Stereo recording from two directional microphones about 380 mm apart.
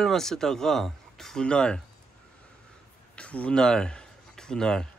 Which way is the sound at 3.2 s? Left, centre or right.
Centre.